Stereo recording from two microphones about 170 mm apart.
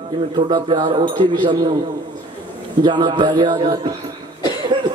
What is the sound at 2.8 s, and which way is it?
A man's voice, 25° right (ahead or behind).